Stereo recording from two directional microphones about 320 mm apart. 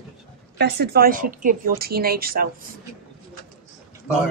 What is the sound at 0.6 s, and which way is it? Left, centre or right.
A woman's voice, right.